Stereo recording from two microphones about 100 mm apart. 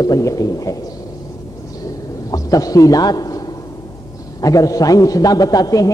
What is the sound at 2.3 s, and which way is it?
A man's voice, 35° left (ahead or behind).